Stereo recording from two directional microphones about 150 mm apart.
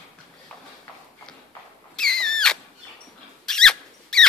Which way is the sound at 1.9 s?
5° left (ahead or behind).